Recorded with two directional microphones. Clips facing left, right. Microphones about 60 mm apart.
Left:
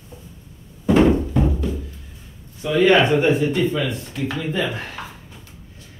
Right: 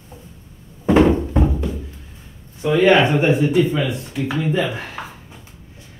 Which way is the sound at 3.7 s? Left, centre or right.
Centre.